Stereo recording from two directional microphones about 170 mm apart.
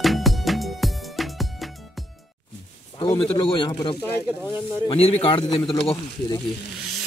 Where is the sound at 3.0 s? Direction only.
30° left (ahead or behind).